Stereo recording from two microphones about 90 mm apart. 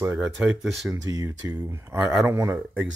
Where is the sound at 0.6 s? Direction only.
Centre (ahead or behind).